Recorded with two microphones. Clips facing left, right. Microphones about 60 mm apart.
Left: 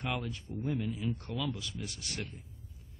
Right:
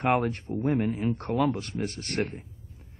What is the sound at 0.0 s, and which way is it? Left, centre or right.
A man's voice, right.